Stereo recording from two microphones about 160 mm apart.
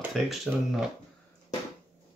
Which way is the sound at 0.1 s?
Centre (ahead or behind).